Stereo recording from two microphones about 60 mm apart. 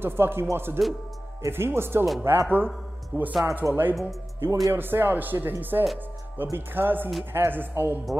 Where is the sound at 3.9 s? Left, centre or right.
Centre.